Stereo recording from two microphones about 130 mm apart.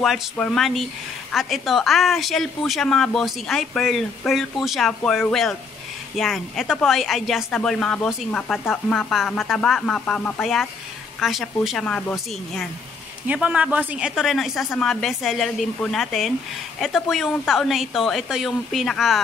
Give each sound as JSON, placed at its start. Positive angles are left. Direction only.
{"t": 0.0, "sound": "a woman's voice", "side_deg": 0}
{"t": 13.3, "sound": "a woman's voice", "side_deg": -10}